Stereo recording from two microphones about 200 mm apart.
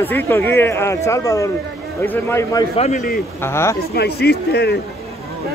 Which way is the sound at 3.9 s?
55° left (ahead or behind).